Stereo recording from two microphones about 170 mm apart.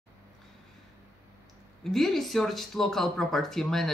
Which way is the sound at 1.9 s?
Centre (ahead or behind).